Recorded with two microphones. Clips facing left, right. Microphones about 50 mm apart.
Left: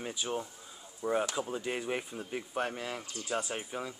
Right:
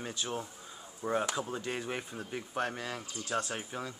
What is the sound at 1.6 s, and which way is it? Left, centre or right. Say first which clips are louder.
Speech: left 2 dB; centre.